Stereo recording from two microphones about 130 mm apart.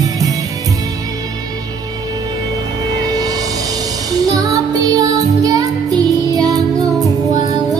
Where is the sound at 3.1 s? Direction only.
25° right (ahead or behind).